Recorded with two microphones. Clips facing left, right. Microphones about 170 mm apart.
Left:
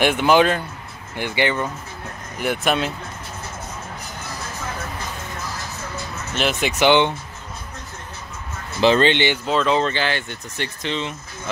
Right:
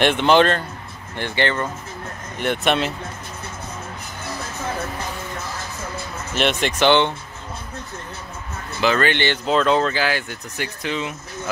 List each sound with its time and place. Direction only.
0.0 s speech: 5° left (ahead or behind)
6.3 s speech: centre (ahead or behind)
6.8 s speech: 15° left (ahead or behind)
8.8 s speech: 25° left (ahead or behind)
9.5 s speech: centre (ahead or behind)